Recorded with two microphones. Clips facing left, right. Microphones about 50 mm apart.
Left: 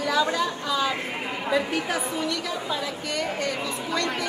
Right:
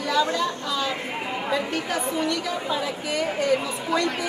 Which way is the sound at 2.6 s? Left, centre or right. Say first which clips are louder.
Right 2 dB; centre.